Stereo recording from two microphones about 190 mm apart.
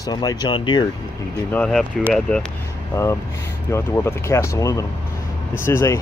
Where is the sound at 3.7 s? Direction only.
15° left (ahead or behind).